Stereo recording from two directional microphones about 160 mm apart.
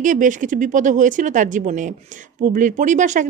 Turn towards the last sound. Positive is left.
turn(degrees=-50)  # may be behind; listen again after turning